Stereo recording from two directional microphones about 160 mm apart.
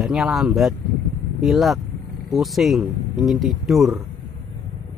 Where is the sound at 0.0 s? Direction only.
5° right (ahead or behind).